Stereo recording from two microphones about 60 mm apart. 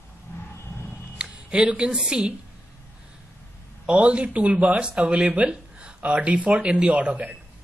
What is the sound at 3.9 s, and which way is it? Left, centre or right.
Speech, centre.